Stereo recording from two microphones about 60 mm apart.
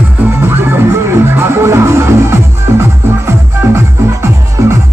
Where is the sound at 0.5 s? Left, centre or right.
Right.